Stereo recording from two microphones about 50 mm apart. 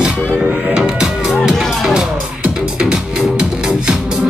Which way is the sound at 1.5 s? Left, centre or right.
Centre.